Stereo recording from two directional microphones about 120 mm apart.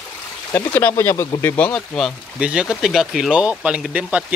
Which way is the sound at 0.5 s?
15° left (ahead or behind).